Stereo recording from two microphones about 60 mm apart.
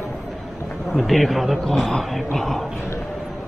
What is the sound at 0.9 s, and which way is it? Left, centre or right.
Speech, centre.